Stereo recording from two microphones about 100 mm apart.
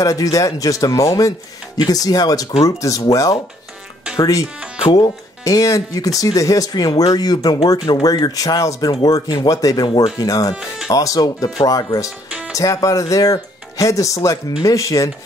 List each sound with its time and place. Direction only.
0.0 s speech: 35° left (ahead or behind)
9.8 s speech: 50° left (ahead or behind)
10.1 s speech: 35° left (ahead or behind)